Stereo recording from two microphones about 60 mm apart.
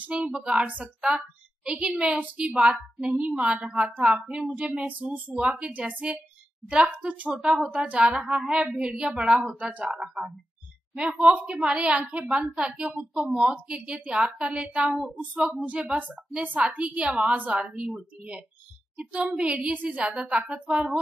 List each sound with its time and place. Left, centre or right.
0.0 s a woman's voice: centre
0.6 s a woman's voice: right
7.3 s a woman's voice: centre
9.8 s a woman's voice: centre
14.5 s a woman's voice: centre
15.1 s a woman's voice: centre